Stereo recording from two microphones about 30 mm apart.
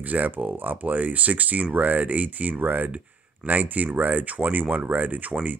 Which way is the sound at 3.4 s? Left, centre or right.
Right.